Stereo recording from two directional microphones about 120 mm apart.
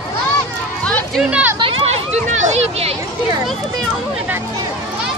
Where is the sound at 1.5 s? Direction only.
50° right (ahead or behind).